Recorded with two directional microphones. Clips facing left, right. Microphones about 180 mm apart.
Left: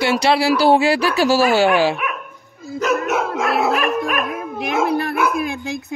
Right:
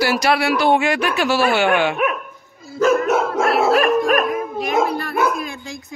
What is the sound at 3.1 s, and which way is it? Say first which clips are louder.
Dog: right 2 dB; 50° right (ahead or behind).